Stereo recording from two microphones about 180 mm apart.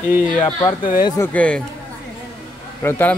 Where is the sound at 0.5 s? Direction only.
20° left (ahead or behind).